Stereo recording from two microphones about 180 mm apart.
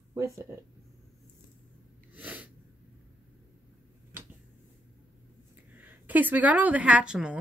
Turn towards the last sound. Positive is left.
turn(degrees=-5)  # may be behind; listen again after turning